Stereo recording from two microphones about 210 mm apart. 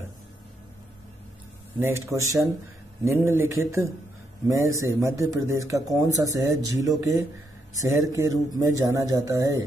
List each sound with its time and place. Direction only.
1.8 s speech: 10° right (ahead or behind)